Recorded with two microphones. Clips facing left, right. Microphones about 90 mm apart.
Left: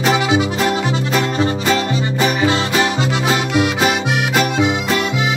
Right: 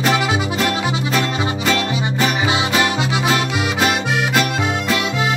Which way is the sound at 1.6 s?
20° left (ahead or behind).